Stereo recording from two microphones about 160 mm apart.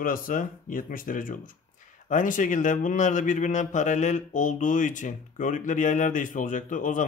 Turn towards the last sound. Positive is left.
turn(degrees=55)  # may be behind; listen again after turning